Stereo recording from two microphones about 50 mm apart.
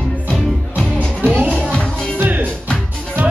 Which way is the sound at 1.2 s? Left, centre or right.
Right.